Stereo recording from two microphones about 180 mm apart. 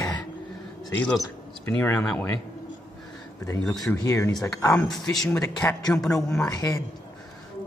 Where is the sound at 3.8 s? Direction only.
15° left (ahead or behind).